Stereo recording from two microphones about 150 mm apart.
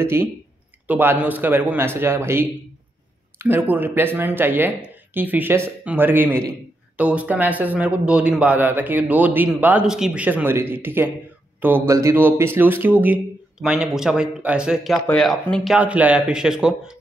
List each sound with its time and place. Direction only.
0.0 s speech: 15° right (ahead or behind)